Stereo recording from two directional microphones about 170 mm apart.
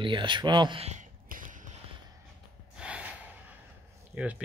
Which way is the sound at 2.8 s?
5° right (ahead or behind).